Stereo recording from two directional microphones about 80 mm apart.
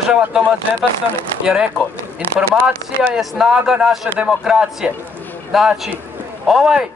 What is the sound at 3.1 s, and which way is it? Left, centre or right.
A man's voice, centre.